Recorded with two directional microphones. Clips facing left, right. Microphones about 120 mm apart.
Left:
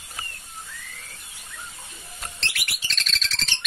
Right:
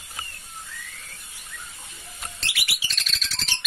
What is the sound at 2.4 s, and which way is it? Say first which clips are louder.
Bird: right 1 dB; 5° right (ahead or behind).